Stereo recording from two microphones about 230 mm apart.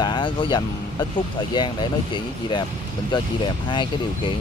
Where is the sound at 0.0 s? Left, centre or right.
Centre.